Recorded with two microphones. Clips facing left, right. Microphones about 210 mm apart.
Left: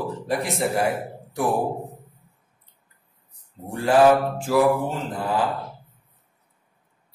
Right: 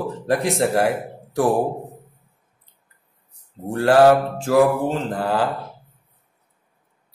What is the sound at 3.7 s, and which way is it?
Mantra, 80° right.